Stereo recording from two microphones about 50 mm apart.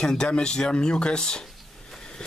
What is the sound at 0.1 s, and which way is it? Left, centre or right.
Speech, centre.